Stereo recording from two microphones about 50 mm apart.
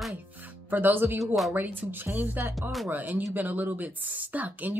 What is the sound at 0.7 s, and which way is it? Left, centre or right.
Speech, right.